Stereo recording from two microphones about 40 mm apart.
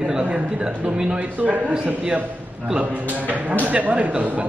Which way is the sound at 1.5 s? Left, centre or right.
Right.